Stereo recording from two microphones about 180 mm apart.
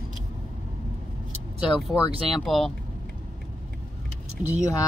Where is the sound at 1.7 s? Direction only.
25° left (ahead or behind).